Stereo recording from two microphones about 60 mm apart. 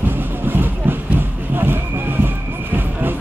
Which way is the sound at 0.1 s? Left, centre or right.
Right.